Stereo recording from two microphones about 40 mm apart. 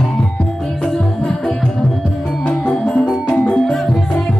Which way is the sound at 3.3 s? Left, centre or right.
Left.